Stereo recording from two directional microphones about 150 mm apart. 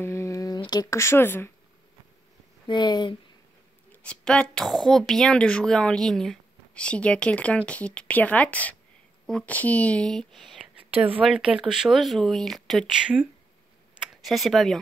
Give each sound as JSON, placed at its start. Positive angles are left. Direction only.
{"t": 0.0, "sound": "a sound", "side_deg": 20}
{"t": 0.6, "sound": "speech", "side_deg": 25}
{"t": 2.6, "sound": "speech", "side_deg": 30}
{"t": 3.9, "sound": "speech", "side_deg": 5}